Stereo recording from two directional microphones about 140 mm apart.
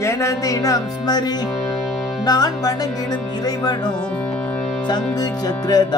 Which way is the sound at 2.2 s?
25° left (ahead or behind).